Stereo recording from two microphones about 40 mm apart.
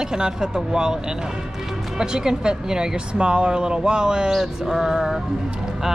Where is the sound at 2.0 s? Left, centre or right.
Centre.